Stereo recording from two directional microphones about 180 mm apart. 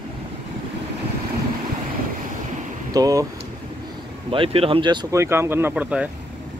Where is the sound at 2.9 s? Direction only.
20° right (ahead or behind).